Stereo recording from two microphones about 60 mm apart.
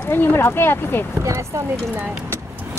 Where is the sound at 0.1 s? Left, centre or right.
Left.